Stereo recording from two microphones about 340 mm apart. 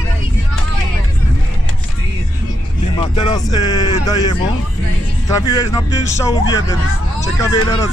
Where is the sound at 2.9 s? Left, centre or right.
Centre.